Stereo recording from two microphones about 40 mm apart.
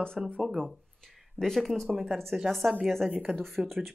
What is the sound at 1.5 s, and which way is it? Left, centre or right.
Speech, centre.